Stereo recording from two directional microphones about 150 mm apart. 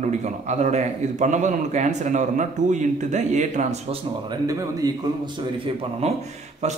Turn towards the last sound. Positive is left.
turn(degrees=-50)  # may be behind; listen again after turning